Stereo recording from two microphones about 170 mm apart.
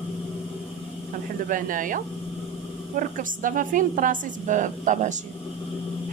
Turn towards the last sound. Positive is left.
turn(degrees=-45)  # may be behind; listen again after turning